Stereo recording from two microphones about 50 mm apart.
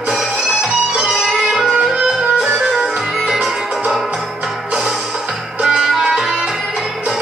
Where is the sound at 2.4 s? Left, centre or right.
Right.